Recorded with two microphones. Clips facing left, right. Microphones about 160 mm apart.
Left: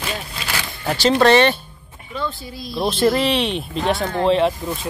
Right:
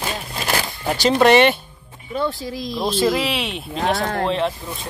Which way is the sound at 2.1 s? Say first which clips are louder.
Right 4 dB; 70° right (ahead or behind).